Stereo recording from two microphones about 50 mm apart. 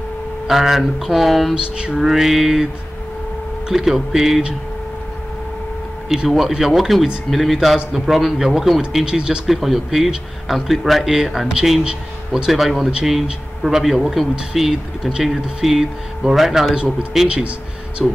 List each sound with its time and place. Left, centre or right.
0.5 s speech: centre
1.5 s a sound: centre
2.0 s speech: centre
6.0 s speech: centre
9.0 s speech: centre
9.5 s speech: centre
18.0 s speech: centre